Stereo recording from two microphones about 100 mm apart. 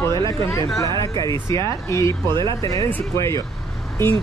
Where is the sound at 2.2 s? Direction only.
50° right (ahead or behind).